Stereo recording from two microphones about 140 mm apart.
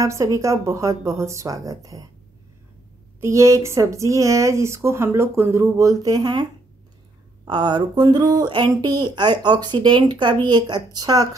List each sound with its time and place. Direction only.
0.0 s speech: 20° right (ahead or behind)
3.2 s speech: 20° right (ahead or behind)
7.4 s speech: 35° right (ahead or behind)